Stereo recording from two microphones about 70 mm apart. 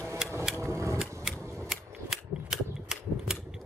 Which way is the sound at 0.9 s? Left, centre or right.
Centre.